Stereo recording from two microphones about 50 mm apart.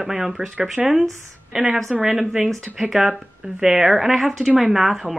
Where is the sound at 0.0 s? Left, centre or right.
Centre.